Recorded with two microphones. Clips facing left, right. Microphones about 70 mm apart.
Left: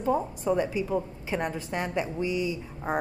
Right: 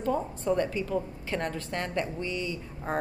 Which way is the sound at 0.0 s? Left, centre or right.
Centre.